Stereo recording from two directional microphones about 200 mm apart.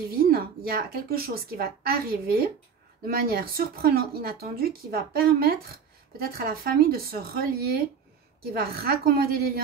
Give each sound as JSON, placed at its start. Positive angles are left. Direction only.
{"t": 0.3, "sound": "speech", "side_deg": -50}